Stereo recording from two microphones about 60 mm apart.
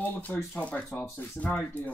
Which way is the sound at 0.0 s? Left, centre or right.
Left.